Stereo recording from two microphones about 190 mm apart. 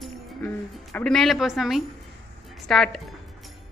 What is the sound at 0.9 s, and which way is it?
A woman's voice, 5° left (ahead or behind).